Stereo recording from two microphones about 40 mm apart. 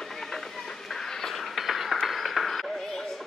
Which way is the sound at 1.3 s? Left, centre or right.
Centre.